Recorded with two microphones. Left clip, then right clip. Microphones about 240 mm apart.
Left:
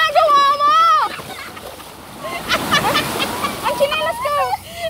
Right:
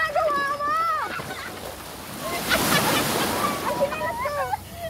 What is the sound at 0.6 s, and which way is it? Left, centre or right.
Boat, left.